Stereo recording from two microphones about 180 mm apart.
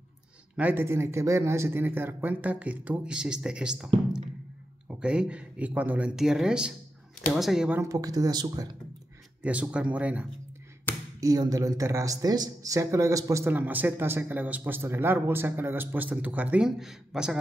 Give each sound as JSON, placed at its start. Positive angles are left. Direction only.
{"t": 0.6, "sound": "speech", "side_deg": -10}
{"t": 7.8, "sound": "speech", "side_deg": -20}
{"t": 9.4, "sound": "speech", "side_deg": -5}
{"t": 11.1, "sound": "speech", "side_deg": -20}